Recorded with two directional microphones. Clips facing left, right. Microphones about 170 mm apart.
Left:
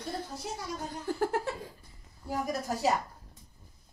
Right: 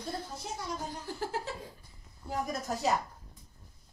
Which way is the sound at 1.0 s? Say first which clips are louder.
Left 10 dB; 55° left (ahead or behind).